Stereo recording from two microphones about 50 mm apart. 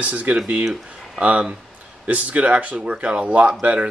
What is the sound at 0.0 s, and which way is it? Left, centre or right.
Speech, right.